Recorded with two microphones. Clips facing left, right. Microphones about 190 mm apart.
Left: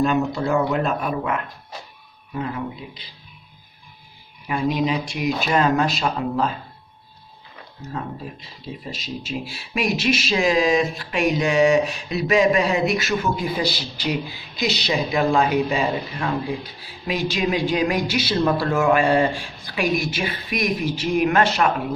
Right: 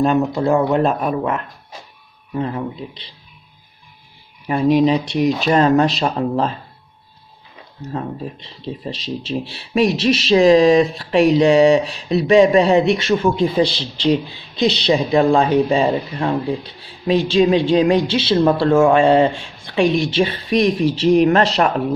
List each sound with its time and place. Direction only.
0.0 s a man's voice: 35° right (ahead or behind)
4.5 s a man's voice: 35° right (ahead or behind)
8.6 s a man's voice: 35° right (ahead or behind)
13.7 s speech: 10° left (ahead or behind)
14.0 s a woman's voice: 30° right (ahead or behind)